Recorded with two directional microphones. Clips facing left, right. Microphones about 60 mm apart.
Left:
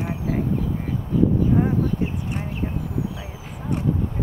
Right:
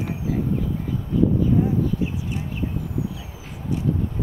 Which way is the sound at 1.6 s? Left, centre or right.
Left.